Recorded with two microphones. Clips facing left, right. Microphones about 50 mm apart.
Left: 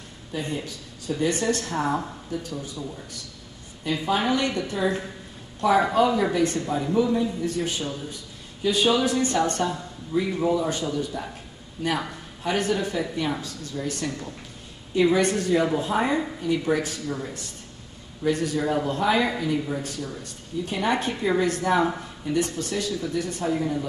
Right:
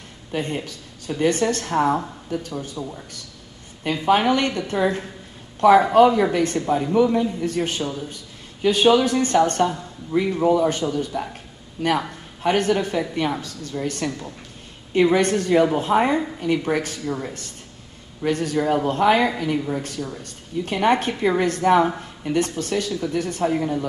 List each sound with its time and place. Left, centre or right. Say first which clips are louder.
0.3 s speech: right 4 dB; right
4.0 s speech: right 6 dB; right
5.6 s a man's voice: right 7 dB; right
6.9 s a man's voice: right 3 dB; right
17.0 s speech: right 4 dB; right
18.2 s speech: right 3 dB; right
20.6 s a man's voice: right 5 dB; right